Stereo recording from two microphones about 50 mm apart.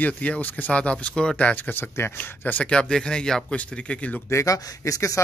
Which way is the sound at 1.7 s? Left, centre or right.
Left.